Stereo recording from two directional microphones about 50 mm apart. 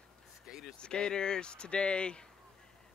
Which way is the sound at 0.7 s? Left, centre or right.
Centre.